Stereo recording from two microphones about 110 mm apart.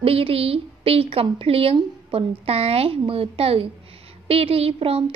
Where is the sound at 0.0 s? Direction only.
60° right (ahead or behind).